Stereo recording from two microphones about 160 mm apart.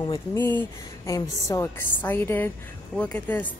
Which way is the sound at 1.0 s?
20° left (ahead or behind).